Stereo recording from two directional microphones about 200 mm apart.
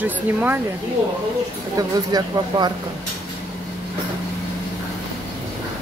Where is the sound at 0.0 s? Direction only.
10° right (ahead or behind).